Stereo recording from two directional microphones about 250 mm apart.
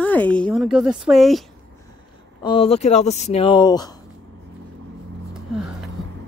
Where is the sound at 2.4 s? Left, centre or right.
Left.